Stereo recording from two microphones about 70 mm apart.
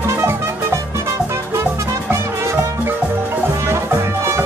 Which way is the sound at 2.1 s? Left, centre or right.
Right.